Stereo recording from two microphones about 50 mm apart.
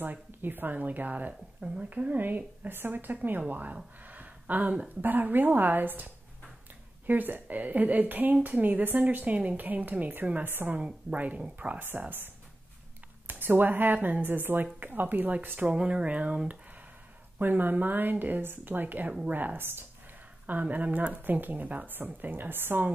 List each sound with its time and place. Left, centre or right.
0.0 s a woman's voice: right
4.0 s a sound: right
5.0 s a woman's voice: right
10.4 s speech: right
10.7 s speech: right
13.3 s a woman's voice: right
15.6 s speech: right
17.4 s a woman's voice: right
20.4 s a woman's voice: right